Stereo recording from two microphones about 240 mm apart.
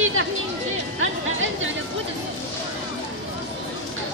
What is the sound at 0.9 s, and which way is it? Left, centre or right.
Chatter, right.